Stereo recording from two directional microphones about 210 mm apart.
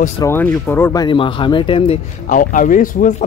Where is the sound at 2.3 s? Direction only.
40° left (ahead or behind).